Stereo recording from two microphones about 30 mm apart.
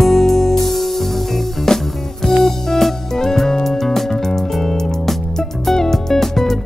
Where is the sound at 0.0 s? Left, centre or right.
Centre.